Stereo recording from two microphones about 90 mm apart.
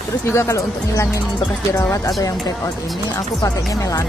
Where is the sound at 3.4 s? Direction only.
40° left (ahead or behind).